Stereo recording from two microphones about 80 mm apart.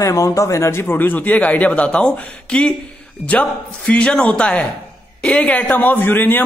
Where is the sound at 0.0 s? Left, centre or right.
Left.